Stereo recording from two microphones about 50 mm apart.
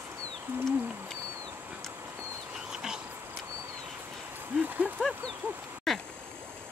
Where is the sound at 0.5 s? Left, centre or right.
Right.